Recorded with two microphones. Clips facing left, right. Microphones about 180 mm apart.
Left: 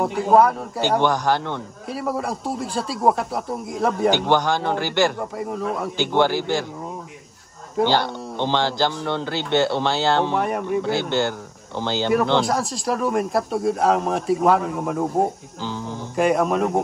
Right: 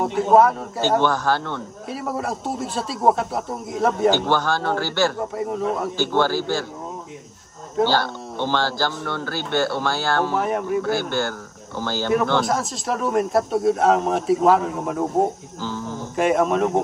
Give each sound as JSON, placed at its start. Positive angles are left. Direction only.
{"t": 0.0, "sound": "speech", "side_deg": 0}
{"t": 0.7, "sound": "speech", "side_deg": 15}
{"t": 1.9, "sound": "speech", "side_deg": 0}
{"t": 4.1, "sound": "speech", "side_deg": 15}
{"t": 5.4, "sound": "speech", "side_deg": 0}
{"t": 5.9, "sound": "speech", "side_deg": 15}
{"t": 7.8, "sound": "speech", "side_deg": 20}
{"t": 10.3, "sound": "speech", "side_deg": 0}
{"t": 10.8, "sound": "speech", "side_deg": 20}
{"t": 12.4, "sound": "speech", "side_deg": 0}
{"t": 15.6, "sound": "music", "side_deg": 15}
{"t": 16.2, "sound": "speech", "side_deg": 0}